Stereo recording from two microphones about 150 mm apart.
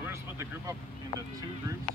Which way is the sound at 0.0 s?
20° right (ahead or behind).